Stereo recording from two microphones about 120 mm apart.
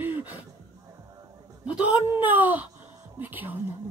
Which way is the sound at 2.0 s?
15° right (ahead or behind).